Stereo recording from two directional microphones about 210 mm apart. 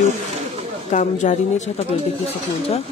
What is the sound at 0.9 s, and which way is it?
Speech, 35° left (ahead or behind).